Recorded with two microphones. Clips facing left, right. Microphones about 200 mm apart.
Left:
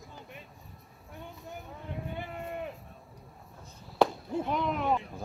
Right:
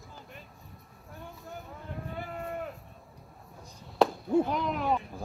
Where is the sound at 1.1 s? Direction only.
20° left (ahead or behind).